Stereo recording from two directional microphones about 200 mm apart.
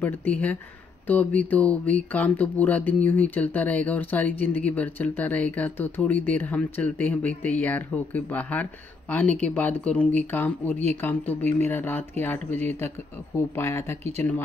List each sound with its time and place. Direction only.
0.0 s speech: 10° left (ahead or behind)